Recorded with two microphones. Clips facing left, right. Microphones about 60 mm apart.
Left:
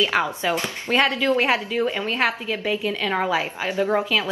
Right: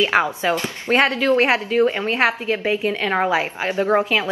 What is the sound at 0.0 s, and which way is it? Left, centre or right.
A woman's voice, right.